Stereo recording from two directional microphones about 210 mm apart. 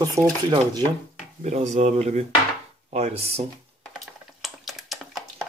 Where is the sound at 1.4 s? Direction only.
35° right (ahead or behind).